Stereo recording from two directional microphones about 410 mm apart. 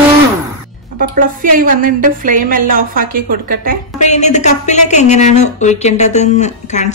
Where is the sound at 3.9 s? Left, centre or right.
Centre.